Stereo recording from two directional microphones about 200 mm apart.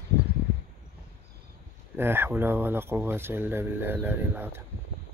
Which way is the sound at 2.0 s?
10° right (ahead or behind).